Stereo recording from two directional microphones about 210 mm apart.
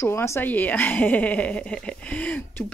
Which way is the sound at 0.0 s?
15° left (ahead or behind).